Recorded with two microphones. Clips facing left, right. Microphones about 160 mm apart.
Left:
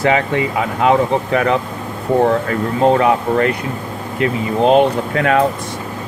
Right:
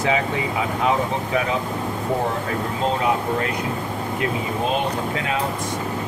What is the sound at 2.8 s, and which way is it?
Speech, 65° left (ahead or behind).